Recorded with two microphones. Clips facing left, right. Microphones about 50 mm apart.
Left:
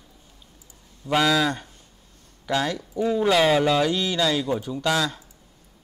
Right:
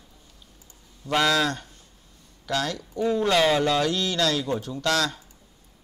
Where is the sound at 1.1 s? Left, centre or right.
Centre.